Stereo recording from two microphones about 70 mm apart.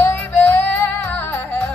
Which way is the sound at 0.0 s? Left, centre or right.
Left.